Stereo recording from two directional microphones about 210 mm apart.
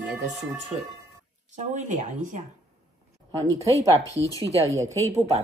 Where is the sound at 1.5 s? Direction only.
35° right (ahead or behind).